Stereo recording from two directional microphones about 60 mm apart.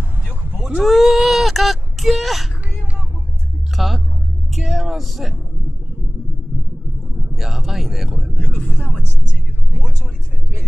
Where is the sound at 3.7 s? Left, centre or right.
Centre.